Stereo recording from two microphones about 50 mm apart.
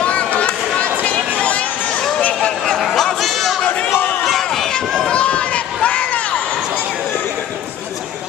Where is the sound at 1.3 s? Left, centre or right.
Left.